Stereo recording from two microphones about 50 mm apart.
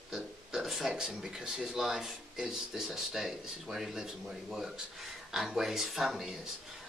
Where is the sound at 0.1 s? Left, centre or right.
Centre.